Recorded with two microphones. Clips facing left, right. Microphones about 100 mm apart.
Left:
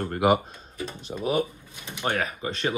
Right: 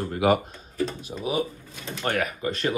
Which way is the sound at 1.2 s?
55° left (ahead or behind).